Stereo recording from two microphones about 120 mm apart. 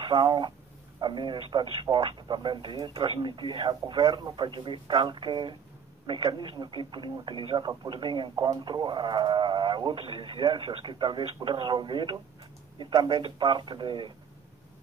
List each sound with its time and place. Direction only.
0.0 s speech: 40° right (ahead or behind)